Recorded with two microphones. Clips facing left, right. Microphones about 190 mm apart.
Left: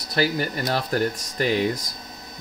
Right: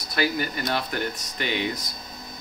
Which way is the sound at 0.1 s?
35° left (ahead or behind).